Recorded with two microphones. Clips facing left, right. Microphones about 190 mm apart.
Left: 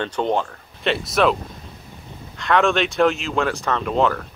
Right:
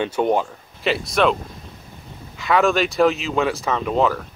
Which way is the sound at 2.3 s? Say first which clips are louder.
Right 1 dB; 5° right (ahead or behind).